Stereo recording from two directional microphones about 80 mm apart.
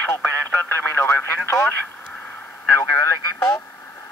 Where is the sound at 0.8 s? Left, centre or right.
Left.